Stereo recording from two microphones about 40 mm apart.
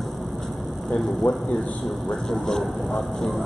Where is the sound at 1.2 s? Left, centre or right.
Left.